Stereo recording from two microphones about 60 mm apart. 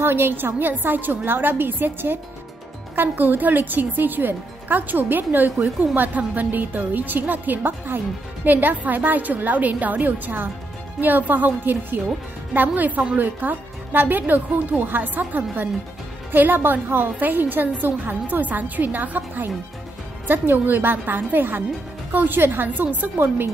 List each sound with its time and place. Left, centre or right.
0.0 s a woman's voice: right